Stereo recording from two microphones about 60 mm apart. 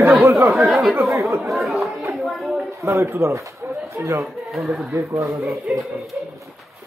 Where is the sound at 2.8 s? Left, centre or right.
Right.